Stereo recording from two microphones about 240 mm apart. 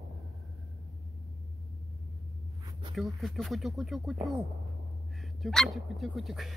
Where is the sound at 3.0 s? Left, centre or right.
Centre.